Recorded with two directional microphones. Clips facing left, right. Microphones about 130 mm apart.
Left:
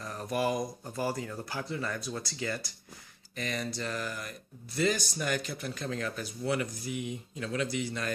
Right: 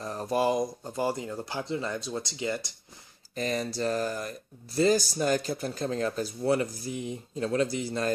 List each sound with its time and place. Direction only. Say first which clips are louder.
0.0 s speech: right 4 dB; 30° right (ahead or behind)
3.3 s speech: right 5 dB; 35° right (ahead or behind)